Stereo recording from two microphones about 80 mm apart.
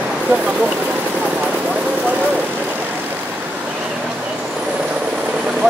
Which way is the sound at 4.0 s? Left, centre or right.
Centre.